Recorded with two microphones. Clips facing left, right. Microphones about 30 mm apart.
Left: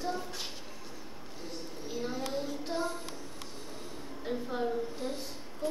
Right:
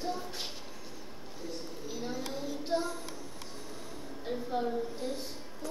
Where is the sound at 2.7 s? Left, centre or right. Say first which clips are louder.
Right 2 dB; centre.